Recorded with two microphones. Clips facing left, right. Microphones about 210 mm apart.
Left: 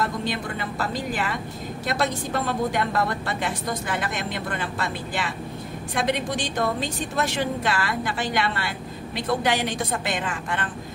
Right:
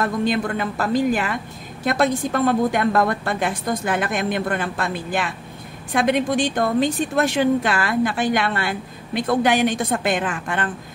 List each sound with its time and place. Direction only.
0.0 s a woman's voice: 55° right (ahead or behind)